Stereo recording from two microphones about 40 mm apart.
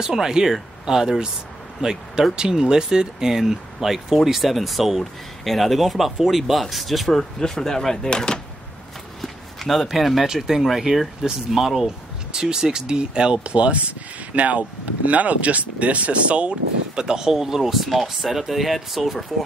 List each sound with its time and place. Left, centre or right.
0.0 s speech: centre
7.1 s speech: centre
9.2 s a sound: centre
10.2 s speech: centre
12.3 s speech: centre